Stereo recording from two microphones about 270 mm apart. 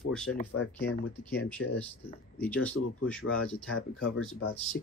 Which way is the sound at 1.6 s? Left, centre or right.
Left.